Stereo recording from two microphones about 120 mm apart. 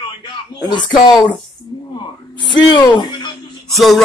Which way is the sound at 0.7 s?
40° left (ahead or behind).